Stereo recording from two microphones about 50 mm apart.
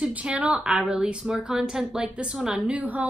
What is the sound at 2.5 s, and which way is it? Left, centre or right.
Speech, right.